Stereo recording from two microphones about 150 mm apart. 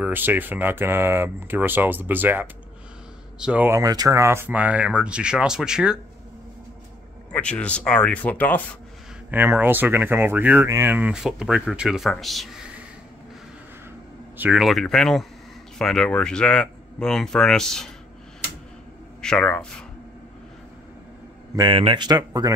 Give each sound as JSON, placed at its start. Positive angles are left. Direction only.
{"t": 0.0, "sound": "speech", "side_deg": -10}
{"t": 7.3, "sound": "speech", "side_deg": 10}
{"t": 9.3, "sound": "speech", "side_deg": -15}
{"t": 14.3, "sound": "speech", "side_deg": -10}
{"t": 19.2, "sound": "speech", "side_deg": 5}
{"t": 21.5, "sound": "speech", "side_deg": -35}